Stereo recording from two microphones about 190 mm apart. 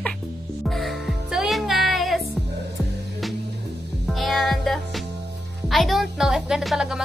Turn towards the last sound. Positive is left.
turn(degrees=-5)  # may be behind; listen again after turning